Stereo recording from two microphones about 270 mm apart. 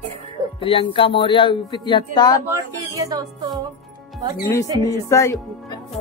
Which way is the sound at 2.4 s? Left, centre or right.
Centre.